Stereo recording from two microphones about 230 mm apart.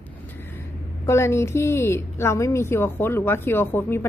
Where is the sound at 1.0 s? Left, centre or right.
Centre.